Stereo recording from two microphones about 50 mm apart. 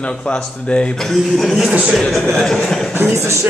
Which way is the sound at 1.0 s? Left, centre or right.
Centre.